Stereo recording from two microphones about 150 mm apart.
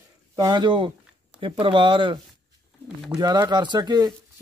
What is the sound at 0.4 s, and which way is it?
Speech, 30° right (ahead or behind).